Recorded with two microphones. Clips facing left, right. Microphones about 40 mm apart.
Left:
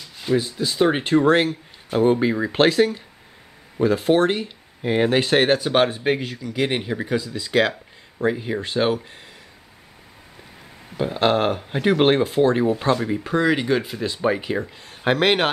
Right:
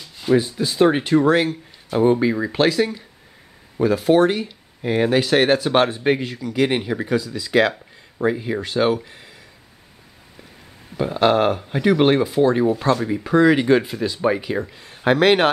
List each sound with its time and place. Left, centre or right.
0.4 s speech: centre
0.9 s speech: centre
2.5 s speech: left; by 7.2 s centre
7.2 s speech: centre
11.0 s speech: centre
11.5 s speech: centre